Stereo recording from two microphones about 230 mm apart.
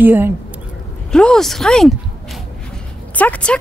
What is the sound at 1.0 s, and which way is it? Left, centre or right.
Speech, centre.